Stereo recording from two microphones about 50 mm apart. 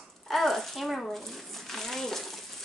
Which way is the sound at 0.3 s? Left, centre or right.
Centre.